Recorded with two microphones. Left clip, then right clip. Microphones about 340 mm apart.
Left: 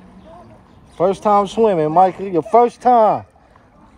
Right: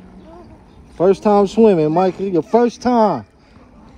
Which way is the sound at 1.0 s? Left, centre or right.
Left.